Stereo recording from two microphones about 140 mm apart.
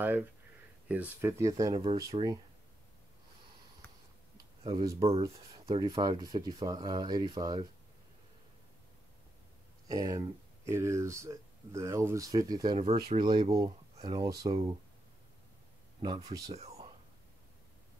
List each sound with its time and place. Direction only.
0.0 s speech: 15° right (ahead or behind)
1.4 s speech: 25° right (ahead or behind)
2.1 s speech: 40° right (ahead or behind)
5.0 s speech: 45° right (ahead or behind)
9.8 s speech: 25° right (ahead or behind)
12.7 s speech: 45° right (ahead or behind); by 14.5 s 30° right (ahead or behind)
14.5 s speech: 40° right (ahead or behind)
16.0 s speech: 30° right (ahead or behind)